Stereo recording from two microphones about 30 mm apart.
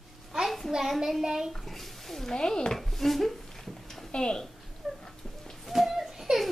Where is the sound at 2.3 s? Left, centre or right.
Left.